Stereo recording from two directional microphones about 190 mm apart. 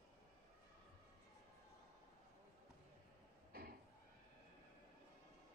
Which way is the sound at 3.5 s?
55° right (ahead or behind).